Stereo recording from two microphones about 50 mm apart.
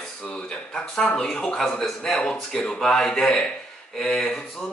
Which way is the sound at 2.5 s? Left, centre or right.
Centre.